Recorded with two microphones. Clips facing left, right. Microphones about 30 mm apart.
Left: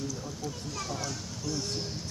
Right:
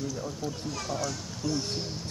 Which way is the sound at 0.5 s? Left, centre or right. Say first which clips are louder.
Even; centre.